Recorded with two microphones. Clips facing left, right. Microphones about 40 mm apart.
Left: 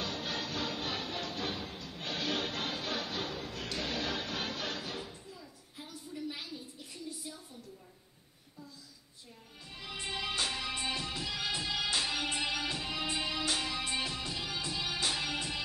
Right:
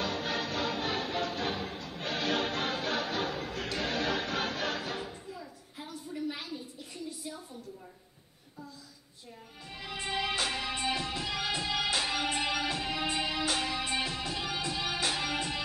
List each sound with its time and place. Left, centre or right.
0.0 s music: centre
6.1 s a sound: centre
9.7 s music: centre